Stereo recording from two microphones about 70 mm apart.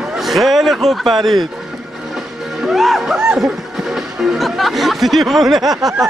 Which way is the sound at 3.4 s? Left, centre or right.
Centre.